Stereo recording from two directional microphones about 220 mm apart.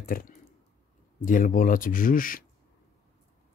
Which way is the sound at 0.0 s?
40° left (ahead or behind).